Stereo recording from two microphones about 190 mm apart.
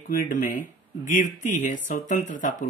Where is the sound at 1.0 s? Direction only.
40° left (ahead or behind).